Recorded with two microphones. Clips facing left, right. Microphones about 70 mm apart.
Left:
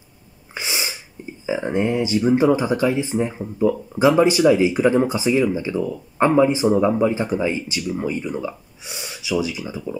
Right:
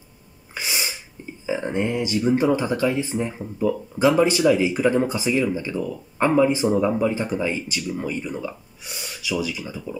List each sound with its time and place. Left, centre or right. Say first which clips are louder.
0.6 s sneeze: left 1 dB; left
1.4 s speech: left 3 dB; centre